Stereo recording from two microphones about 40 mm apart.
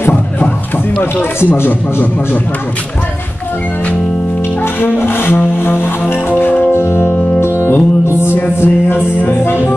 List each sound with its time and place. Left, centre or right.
4.7 s music: left
8.6 s music: left